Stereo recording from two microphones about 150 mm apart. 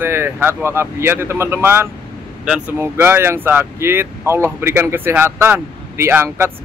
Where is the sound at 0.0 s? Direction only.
15° right (ahead or behind).